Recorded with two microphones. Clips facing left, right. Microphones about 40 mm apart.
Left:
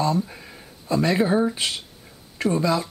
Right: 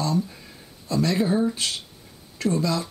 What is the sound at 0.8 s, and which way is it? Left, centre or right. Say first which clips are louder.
Speech: left 2 dB; centre.